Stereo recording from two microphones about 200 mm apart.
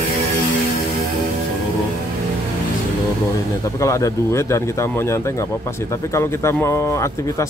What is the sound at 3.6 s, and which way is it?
Speech, 15° left (ahead or behind).